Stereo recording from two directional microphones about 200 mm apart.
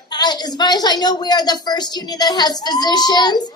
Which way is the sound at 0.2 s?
20° left (ahead or behind).